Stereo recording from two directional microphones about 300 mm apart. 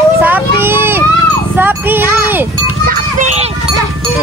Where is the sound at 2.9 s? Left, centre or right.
Right.